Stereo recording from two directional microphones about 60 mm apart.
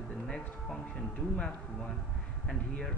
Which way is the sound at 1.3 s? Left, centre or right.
Centre.